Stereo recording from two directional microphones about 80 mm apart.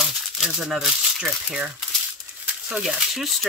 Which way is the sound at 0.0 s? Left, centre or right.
Centre.